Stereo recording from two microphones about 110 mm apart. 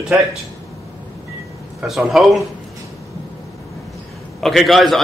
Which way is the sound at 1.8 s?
Centre (ahead or behind).